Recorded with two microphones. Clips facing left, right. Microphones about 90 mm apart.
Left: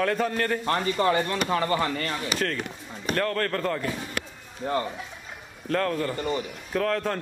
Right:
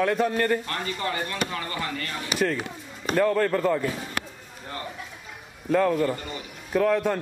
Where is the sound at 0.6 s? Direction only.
35° left (ahead or behind).